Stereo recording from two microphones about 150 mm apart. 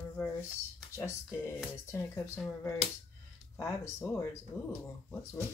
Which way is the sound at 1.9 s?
20° left (ahead or behind).